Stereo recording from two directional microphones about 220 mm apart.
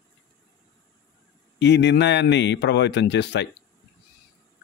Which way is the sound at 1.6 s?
50° left (ahead or behind).